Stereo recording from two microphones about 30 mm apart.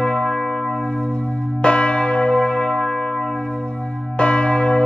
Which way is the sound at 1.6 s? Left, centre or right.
Left.